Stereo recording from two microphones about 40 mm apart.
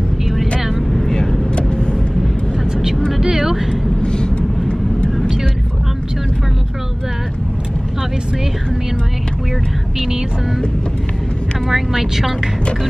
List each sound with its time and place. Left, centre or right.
0.9 s vehicle: centre
1.5 s vehicle: left
3.1 s vehicle: centre
4.0 s vehicle: left
11.7 s speech: centre